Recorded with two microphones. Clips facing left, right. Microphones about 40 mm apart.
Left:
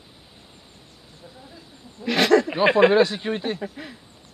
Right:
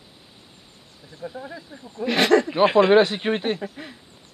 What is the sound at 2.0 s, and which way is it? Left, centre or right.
Speech, centre.